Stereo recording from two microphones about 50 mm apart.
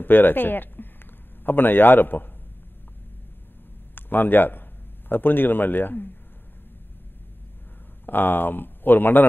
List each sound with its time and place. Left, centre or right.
0.0 s a man's voice: left
3.9 s a man's voice: left
8.0 s speech: left